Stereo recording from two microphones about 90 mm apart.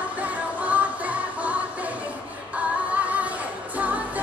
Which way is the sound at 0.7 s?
15° right (ahead or behind).